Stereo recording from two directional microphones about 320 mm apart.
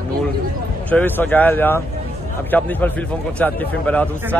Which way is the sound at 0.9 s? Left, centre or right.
Centre.